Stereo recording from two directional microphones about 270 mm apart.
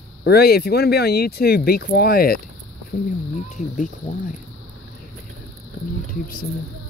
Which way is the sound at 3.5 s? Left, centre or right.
Left.